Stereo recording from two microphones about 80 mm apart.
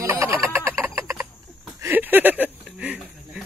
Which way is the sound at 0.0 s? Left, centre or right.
Right.